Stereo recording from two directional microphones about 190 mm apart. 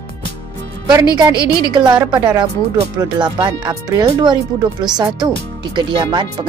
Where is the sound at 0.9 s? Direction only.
20° right (ahead or behind).